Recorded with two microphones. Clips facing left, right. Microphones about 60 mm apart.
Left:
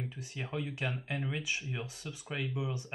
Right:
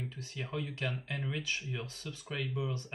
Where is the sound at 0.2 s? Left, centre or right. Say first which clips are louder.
Even; centre.